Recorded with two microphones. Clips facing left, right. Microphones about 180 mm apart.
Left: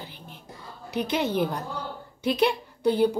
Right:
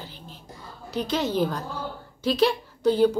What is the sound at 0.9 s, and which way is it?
Speech, 60° left (ahead or behind).